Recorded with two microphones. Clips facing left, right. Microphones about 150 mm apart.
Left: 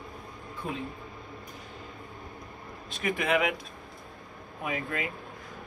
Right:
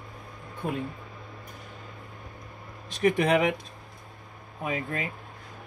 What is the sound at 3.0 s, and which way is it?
Speech, 40° right (ahead or behind).